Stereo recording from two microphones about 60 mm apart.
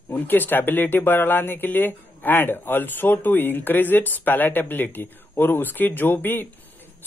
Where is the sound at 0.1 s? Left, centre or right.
Left.